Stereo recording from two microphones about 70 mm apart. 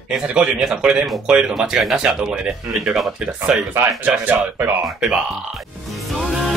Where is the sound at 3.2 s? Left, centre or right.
Centre.